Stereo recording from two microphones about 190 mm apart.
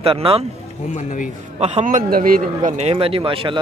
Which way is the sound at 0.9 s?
45° left (ahead or behind).